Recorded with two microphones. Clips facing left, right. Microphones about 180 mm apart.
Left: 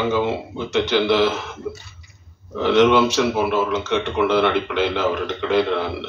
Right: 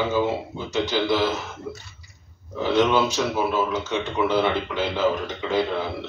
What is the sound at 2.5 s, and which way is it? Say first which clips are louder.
A man's voice: left 5 dB; 75° left (ahead or behind).